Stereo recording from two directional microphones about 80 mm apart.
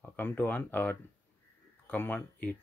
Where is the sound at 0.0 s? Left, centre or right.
Left.